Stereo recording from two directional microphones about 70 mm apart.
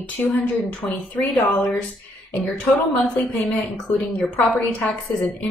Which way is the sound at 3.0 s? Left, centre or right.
Left.